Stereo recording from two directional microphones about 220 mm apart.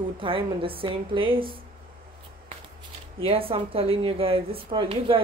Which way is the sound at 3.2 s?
25° right (ahead or behind).